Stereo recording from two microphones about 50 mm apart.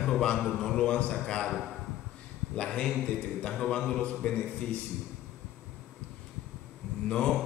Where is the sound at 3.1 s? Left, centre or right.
Left.